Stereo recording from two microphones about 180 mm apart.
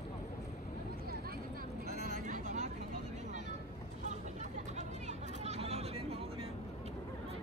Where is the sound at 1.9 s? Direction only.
50° right (ahead or behind).